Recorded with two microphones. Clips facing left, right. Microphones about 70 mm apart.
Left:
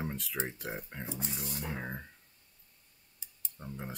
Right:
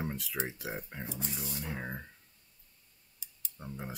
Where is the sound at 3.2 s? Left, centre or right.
Left.